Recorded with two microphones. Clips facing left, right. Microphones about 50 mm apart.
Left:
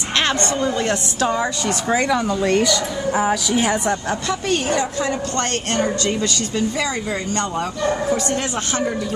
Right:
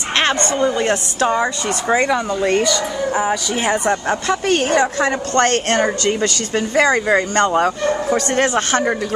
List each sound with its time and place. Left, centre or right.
0.2 s a woman's voice: centre
3.9 s speech: right